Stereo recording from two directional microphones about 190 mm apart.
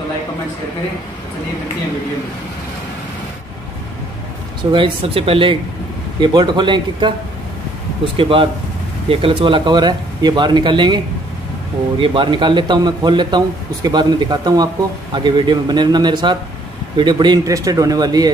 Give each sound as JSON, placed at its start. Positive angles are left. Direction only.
{"t": 4.7, "sound": "speech", "side_deg": -30}
{"t": 12.0, "sound": "speech", "side_deg": -25}